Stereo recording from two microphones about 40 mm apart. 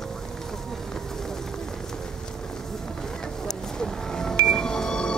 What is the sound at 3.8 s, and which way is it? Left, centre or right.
Music, centre.